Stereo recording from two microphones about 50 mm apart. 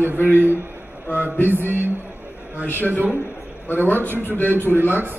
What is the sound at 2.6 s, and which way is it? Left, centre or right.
A man's voice, left.